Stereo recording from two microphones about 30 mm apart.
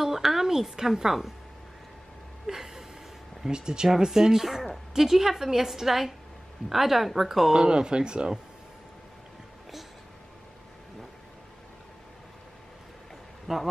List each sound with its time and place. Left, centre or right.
0.0 s a sound: centre
2.4 s gasp: centre
3.4 s a woman's voice: right; by 7.5 s centre
7.5 s speech: right
13.5 s a woman's voice: centre